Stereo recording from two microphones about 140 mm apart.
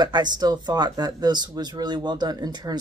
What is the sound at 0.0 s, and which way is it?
Speech, 30° right (ahead or behind).